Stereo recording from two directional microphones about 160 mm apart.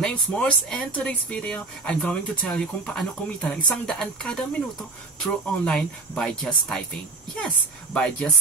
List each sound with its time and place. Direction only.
0.0 s speech: 5° left (ahead or behind)